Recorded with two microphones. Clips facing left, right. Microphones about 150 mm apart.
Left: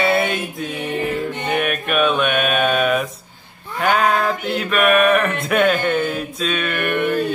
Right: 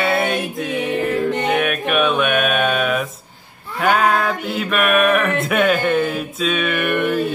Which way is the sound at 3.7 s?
Centre (ahead or behind).